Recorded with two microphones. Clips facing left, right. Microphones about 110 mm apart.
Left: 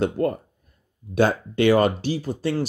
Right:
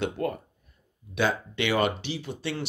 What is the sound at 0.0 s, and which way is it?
Speech, 40° left (ahead or behind).